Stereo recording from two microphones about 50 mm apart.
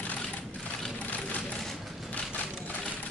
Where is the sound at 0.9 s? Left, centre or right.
Left.